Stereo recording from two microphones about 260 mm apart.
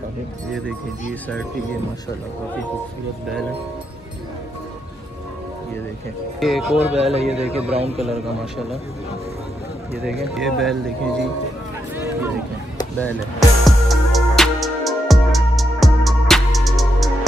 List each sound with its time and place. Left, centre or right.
6.4 s speech: centre
6.8 s a man's voice: right
10.0 s speech: centre
12.7 s chop: centre
13.7 s music: centre